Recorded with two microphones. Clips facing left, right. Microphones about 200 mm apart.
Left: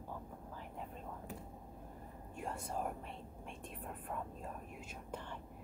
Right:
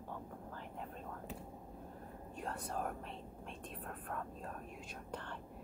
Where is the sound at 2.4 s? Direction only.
10° left (ahead or behind).